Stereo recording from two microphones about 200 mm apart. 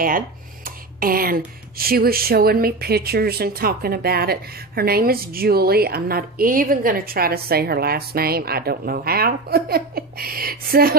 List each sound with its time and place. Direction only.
0.7 s speech: 45° right (ahead or behind)